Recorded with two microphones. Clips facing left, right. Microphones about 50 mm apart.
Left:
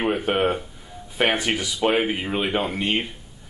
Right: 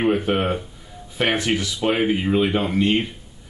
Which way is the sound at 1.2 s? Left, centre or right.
Centre.